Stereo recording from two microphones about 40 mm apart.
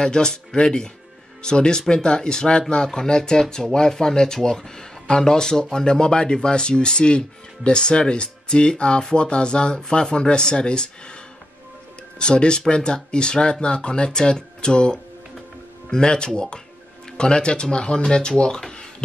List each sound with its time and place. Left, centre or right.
0.0 s speech: centre
12.2 s speech: left
18.7 s a sound: left